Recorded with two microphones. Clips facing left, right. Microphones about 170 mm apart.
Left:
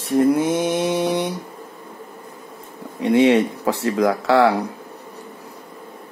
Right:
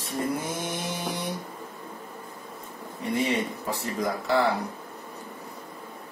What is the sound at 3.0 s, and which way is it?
Speech, 90° left.